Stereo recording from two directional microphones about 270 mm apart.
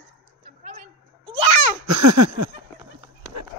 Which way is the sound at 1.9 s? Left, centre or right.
Right.